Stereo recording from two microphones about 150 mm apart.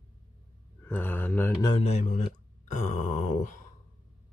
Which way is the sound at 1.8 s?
50° left (ahead or behind).